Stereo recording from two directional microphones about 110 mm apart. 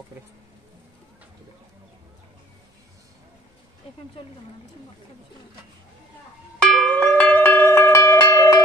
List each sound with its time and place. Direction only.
6.6 s cowbell: 5° left (ahead or behind); by 8.6 s 30° left (ahead or behind)